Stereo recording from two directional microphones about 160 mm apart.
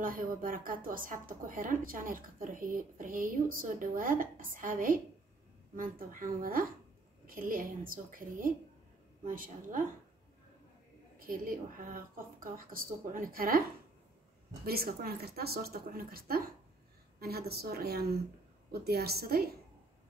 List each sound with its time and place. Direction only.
0.0 s speech: 60° right (ahead or behind)
11.1 s a woman's voice: 60° right (ahead or behind)